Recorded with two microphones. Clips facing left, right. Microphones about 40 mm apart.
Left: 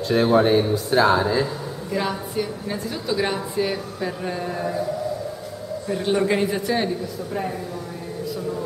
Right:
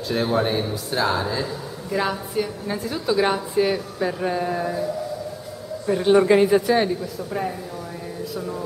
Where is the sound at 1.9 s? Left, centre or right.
Centre.